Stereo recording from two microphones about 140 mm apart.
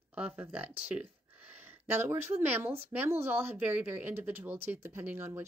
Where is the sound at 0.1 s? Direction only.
10° right (ahead or behind).